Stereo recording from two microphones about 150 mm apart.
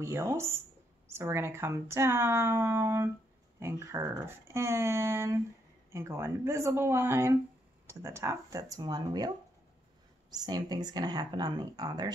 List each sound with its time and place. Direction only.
0.0 s speech: 20° right (ahead or behind)
10.3 s speech: 25° right (ahead or behind)